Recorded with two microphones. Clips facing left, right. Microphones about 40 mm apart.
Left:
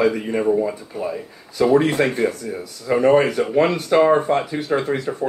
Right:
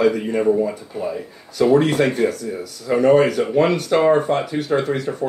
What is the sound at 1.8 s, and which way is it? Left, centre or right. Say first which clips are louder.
Speech: right 1 dB; centre.